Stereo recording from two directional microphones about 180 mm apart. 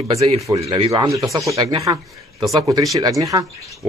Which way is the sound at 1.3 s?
20° right (ahead or behind).